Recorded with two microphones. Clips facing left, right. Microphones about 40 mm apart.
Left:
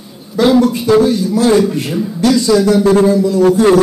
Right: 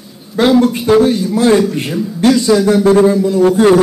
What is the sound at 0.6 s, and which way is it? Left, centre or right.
Speech, right.